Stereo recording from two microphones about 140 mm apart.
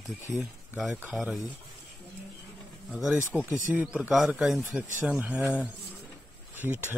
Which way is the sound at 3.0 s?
5° right (ahead or behind).